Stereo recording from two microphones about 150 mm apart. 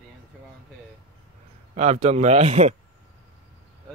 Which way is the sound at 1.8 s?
45° right (ahead or behind).